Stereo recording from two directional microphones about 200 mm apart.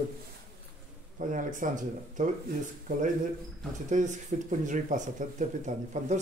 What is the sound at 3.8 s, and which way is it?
Speech, 40° right (ahead or behind).